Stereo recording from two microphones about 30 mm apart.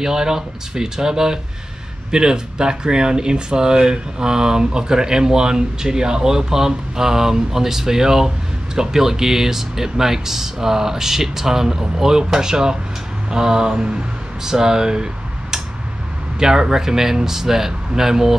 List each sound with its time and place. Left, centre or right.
0.0 s speech: centre
14.4 s speech: centre
16.3 s speech: centre